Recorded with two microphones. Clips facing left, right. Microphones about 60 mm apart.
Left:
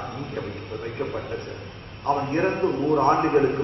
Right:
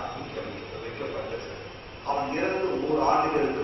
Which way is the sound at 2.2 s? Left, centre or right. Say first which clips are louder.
Left 4 dB; centre.